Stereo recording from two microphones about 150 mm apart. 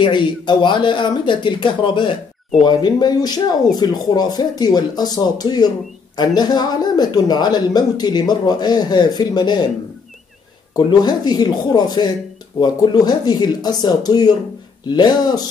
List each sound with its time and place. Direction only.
0.0 s speech: 30° left (ahead or behind)
10.7 s speech: 30° left (ahead or behind)